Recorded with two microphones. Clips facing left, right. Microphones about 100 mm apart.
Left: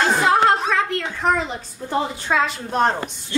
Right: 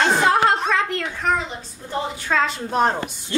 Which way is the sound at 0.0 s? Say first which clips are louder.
Left 1 dB; centre (ahead or behind).